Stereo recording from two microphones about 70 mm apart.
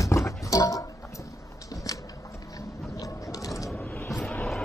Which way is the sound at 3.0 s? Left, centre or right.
Left.